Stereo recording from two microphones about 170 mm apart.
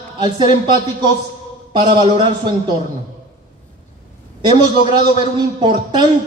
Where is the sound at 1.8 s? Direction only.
30° right (ahead or behind).